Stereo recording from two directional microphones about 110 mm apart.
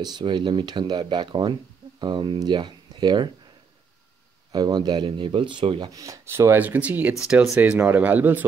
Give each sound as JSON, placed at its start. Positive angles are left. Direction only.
{"t": 0.0, "sound": "speech", "side_deg": -40}
{"t": 4.5, "sound": "speech", "side_deg": -40}
{"t": 5.9, "sound": "speech", "side_deg": -30}